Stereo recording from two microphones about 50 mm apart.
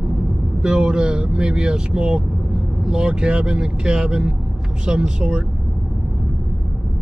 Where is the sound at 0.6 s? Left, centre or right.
Centre.